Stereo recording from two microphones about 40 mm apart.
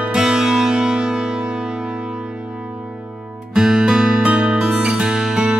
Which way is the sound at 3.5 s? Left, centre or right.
Centre.